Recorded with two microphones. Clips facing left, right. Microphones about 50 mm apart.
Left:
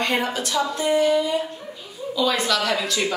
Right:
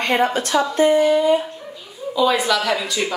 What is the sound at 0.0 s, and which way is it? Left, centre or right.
Speech, right.